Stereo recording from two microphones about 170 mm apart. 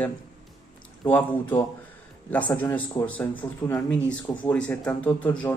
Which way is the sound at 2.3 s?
10° left (ahead or behind).